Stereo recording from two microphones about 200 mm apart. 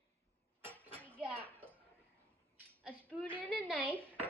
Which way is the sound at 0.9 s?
5° left (ahead or behind).